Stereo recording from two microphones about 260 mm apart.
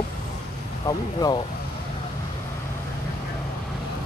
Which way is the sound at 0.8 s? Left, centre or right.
Centre.